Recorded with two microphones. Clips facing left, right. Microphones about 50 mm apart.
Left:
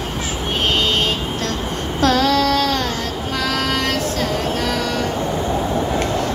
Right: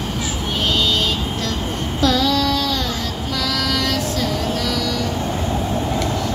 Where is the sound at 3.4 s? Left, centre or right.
Left.